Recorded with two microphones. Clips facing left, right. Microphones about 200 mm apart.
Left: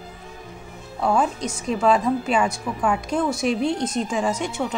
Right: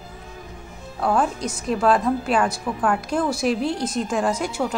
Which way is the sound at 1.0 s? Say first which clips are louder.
Even; 5° right (ahead or behind).